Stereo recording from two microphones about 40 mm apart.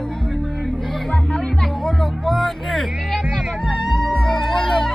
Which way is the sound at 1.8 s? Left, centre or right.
Centre.